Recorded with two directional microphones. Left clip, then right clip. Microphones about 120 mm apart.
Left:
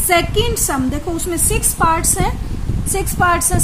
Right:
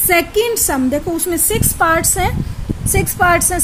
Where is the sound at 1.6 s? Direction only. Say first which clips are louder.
Right 1 dB; 35° right (ahead or behind).